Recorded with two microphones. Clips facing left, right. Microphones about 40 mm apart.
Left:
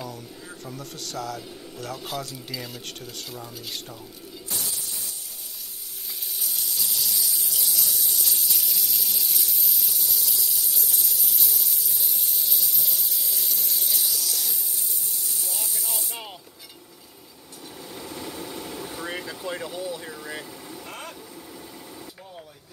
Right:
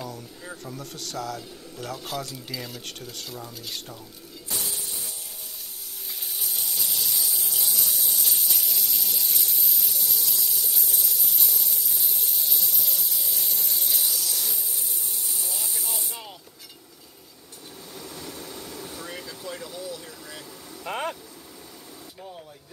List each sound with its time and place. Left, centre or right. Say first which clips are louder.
0.7 s speech: left 3 dB; centre
6.4 s fly: even; centre
8.5 s a sound: even; centre
15.4 s spray: even; centre
17.9 s vehicle: left 3 dB; centre
20.8 s vehicle: right 11 dB; right